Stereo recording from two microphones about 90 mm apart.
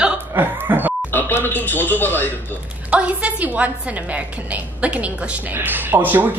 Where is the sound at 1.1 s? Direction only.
20° left (ahead or behind).